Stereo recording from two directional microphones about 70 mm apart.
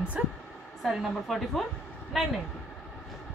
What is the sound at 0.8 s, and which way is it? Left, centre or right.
A woman's voice, centre.